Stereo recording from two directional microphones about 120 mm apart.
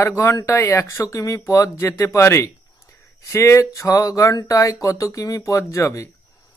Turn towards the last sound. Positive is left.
turn(degrees=25)  # may be behind; listen again after turning